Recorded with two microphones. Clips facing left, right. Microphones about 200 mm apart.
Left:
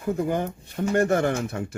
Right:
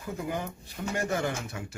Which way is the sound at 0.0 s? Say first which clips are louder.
Left 9 dB; 50° left (ahead or behind).